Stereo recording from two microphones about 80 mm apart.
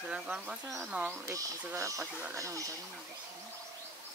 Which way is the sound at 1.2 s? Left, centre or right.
Right.